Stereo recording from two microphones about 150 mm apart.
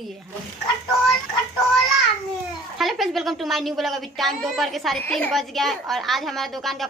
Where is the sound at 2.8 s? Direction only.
Centre (ahead or behind).